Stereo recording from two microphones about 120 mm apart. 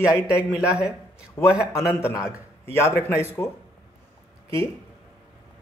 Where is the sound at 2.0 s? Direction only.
25° left (ahead or behind).